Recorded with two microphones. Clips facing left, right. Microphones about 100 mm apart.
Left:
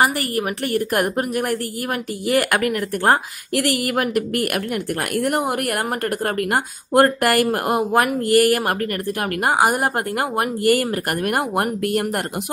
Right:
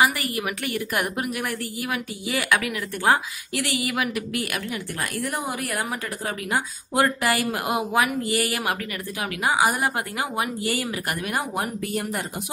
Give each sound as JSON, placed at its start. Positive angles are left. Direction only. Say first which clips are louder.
{"t": 0.7, "sound": "a woman's voice", "louder": "left 7 dB", "side_deg": 50}
{"t": 2.2, "sound": "a woman's voice", "louder": "left 6 dB", "side_deg": 60}
{"t": 5.1, "sound": "a woman's voice", "louder": "left 9 dB", "side_deg": 65}